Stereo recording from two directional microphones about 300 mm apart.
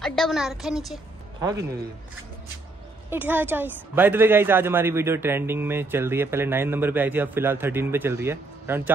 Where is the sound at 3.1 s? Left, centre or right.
Centre.